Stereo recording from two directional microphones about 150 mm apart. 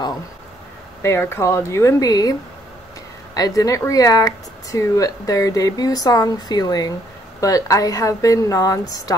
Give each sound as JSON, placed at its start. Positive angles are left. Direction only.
{"t": 1.0, "sound": "speech", "side_deg": 15}
{"t": 3.3, "sound": "speech", "side_deg": 25}